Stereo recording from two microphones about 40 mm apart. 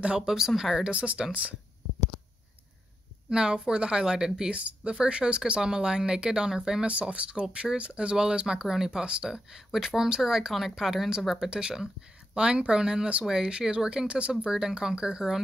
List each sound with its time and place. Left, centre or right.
0.0 s speech: right
0.6 s speech: centre
0.8 s speech: right
3.3 s speech: centre
4.5 s speech: right
6.9 s speech: right
8.6 s speech: centre
9.0 s speech: right
9.3 s speech: centre
11.3 s speech: centre
14.3 s speech: centre